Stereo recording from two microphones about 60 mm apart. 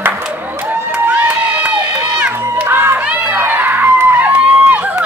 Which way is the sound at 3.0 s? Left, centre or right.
Right.